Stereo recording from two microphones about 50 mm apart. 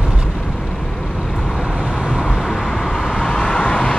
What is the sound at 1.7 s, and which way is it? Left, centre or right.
Vehicle, centre.